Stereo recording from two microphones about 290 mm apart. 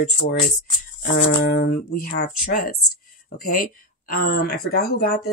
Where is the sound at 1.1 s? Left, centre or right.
Left.